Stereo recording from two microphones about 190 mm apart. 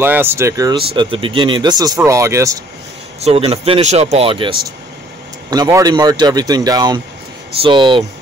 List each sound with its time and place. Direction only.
0.0 s speech: 10° right (ahead or behind)
3.2 s a man's voice: 35° right (ahead or behind)